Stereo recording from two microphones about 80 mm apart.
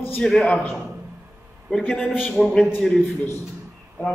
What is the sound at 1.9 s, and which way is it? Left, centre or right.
Speech, centre.